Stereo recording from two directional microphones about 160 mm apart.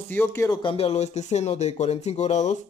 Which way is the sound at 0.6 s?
35° left (ahead or behind).